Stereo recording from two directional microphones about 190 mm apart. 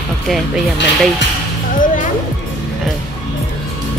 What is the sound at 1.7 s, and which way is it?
Music, 45° left (ahead or behind).